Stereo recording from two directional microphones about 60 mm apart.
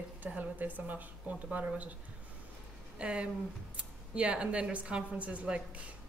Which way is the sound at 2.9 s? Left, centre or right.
Centre.